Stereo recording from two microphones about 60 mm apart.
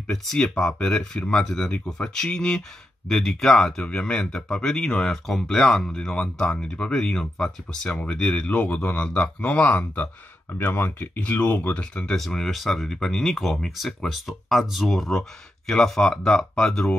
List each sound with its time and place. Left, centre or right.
0.1 s speech: centre
10.6 s speech: left; by 12.1 s centre
12.1 s speech: centre